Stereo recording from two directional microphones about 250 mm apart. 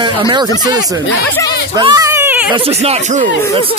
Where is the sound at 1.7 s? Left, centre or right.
Centre.